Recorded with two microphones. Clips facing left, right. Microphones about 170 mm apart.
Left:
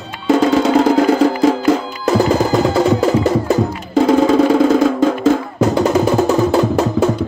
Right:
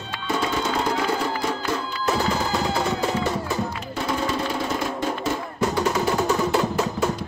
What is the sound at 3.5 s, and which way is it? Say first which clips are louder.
Music: left 12 dB; 90° left.